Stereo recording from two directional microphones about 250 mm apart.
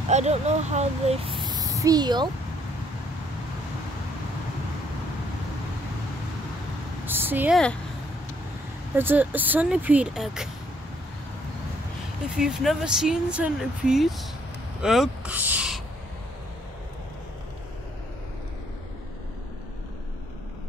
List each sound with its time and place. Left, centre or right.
0.1 s speech: right
1.4 s a sound: centre
7.1 s speech: centre
8.9 s speech: centre
12.4 s speech: centre
14.8 s a sound: centre